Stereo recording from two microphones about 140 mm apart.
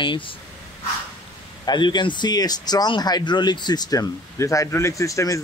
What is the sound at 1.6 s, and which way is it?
Speech, 30° left (ahead or behind).